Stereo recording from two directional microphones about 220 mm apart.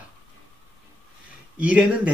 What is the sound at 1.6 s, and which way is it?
Speech, 5° right (ahead or behind).